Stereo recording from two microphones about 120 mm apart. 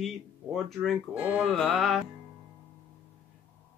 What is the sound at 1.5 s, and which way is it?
Music, 5° left (ahead or behind).